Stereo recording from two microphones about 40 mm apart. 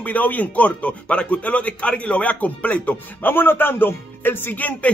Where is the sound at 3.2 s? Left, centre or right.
Left.